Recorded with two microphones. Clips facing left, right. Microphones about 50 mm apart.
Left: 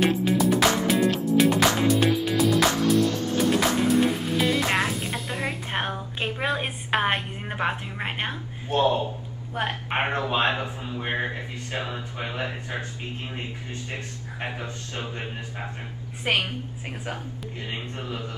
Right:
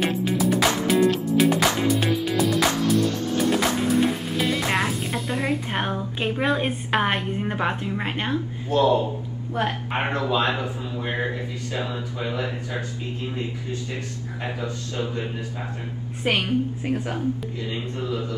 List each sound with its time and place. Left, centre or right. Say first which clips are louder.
0.0 s music: left 1 dB; centre
6.6 s a woman's voice: right 2 dB; centre
8.6 s speech: right 2 dB; left
14.4 s speech: right 3 dB; left
16.8 s speech: right 9 dB; centre
17.6 s speech: right 5 dB; left